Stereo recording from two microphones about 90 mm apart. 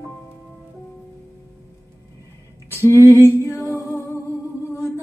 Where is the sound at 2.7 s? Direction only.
25° left (ahead or behind).